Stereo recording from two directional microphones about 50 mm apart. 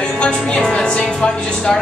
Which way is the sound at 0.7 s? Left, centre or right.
Centre.